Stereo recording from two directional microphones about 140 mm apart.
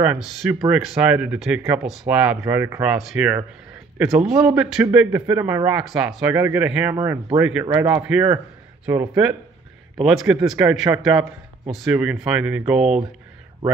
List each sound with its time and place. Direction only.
0.0 s speech: 5° right (ahead or behind)
6.3 s speech: 15° right (ahead or behind)